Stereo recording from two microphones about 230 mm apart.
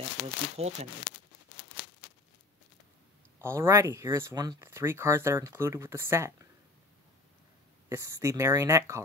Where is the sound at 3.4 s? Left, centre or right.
Centre.